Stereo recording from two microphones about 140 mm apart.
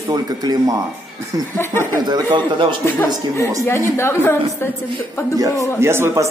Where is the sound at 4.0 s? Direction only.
15° left (ahead or behind).